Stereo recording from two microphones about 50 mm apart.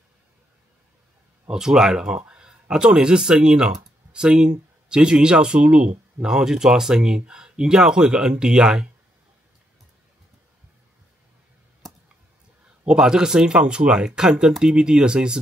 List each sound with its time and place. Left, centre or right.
1.5 s speech: centre
11.8 s clicking: centre
12.8 s speech: centre